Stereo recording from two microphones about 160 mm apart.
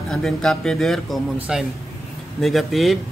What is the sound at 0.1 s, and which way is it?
Speech, 5° left (ahead or behind).